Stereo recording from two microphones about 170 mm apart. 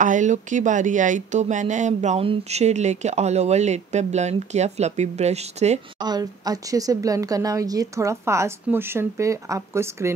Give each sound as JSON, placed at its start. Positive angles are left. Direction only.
{"t": 0.0, "sound": "speech", "side_deg": -45}
{"t": 5.9, "sound": "speech", "side_deg": -25}